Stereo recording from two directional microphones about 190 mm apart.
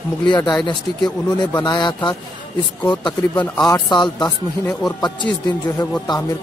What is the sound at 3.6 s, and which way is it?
Speech, 20° left (ahead or behind).